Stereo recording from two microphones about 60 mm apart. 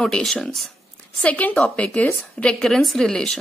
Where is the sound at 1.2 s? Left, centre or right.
Left.